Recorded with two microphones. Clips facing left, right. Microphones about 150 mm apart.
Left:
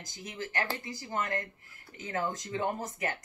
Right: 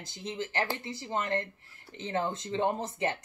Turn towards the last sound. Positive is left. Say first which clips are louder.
# right 3 dB
turn(degrees=-30)  # may be behind; listen again after turning